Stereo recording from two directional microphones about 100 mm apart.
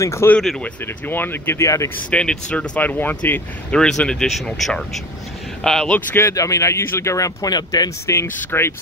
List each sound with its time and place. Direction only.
0.0 s speech: 30° left (ahead or behind)
0.4 s speech: 5° left (ahead or behind)
1.0 s speech: 20° left (ahead or behind)
2.0 s speech: 10° left (ahead or behind)
5.9 s speech: 25° left (ahead or behind)
8.1 s speech: 25° left (ahead or behind)